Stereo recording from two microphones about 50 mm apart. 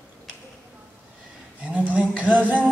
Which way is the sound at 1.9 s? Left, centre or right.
Right.